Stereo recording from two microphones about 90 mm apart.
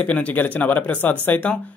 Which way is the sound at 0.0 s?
15° left (ahead or behind).